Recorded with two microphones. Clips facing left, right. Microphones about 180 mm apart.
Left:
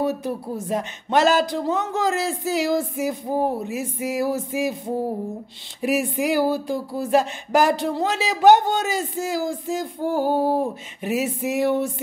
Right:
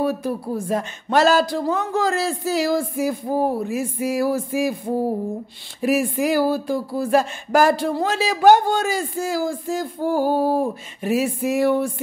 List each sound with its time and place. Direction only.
0.0 s speech: 20° left (ahead or behind)